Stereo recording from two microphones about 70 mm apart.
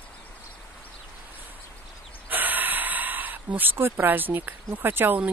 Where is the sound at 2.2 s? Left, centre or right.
Right.